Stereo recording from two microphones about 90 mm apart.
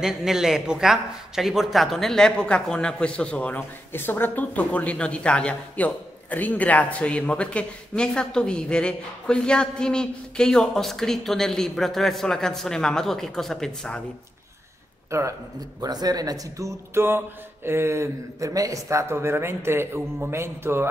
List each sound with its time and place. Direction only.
0.0 s a man's voice: 5° right (ahead or behind)
15.0 s speech: 30° right (ahead or behind)
15.8 s speech: 45° right (ahead or behind); by 20.9 s 25° right (ahead or behind)